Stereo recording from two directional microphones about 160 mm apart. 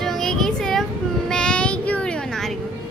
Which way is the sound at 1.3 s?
5° left (ahead or behind).